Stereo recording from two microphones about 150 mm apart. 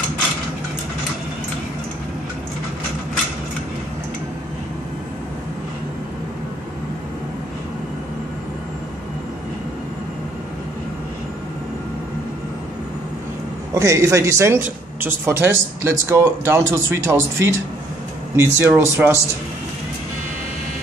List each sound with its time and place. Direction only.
13.7 s speech: 20° right (ahead or behind)